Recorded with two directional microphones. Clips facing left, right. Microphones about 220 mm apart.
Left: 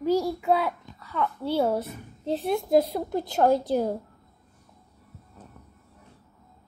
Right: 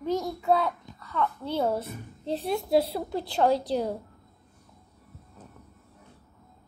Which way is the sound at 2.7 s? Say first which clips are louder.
Left 2 dB; 45° left (ahead or behind).